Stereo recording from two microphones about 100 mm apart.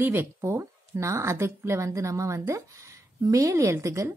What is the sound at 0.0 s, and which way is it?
A woman's voice, 25° right (ahead or behind).